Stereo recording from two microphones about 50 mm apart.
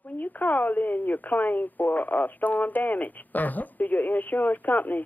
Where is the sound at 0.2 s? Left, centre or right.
Left.